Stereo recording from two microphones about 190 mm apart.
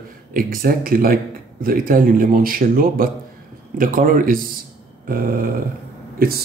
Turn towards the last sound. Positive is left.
turn(degrees=-50)  # may be behind; listen again after turning